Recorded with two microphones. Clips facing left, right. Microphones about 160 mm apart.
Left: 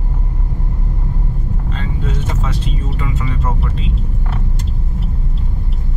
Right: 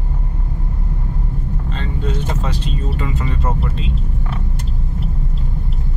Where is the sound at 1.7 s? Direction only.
5° left (ahead or behind).